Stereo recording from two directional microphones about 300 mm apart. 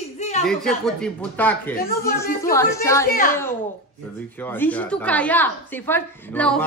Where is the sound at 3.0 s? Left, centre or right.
Left.